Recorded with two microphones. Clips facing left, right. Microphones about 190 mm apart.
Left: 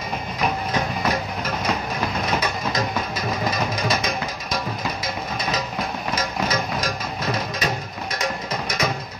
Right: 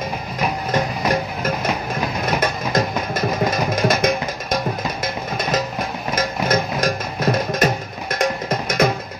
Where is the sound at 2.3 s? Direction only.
50° right (ahead or behind).